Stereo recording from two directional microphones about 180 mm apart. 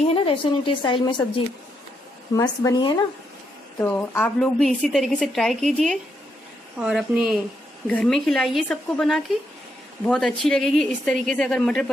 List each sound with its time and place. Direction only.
0.0 s a woman's voice: 30° left (ahead or behind)
3.8 s a woman's voice: 10° left (ahead or behind)